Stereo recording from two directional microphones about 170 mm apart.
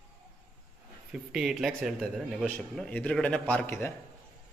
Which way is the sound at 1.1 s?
5° right (ahead or behind).